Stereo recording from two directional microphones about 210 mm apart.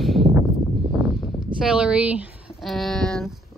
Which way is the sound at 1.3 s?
5° right (ahead or behind).